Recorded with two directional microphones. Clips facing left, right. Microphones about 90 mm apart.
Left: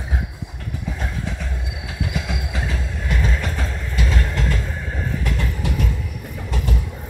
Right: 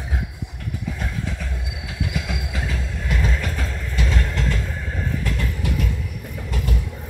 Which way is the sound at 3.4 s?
25° left (ahead or behind).